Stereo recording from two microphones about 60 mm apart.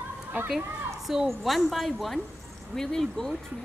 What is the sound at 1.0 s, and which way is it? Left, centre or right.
A woman's voice, centre.